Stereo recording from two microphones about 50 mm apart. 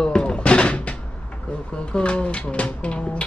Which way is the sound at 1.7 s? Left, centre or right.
Centre.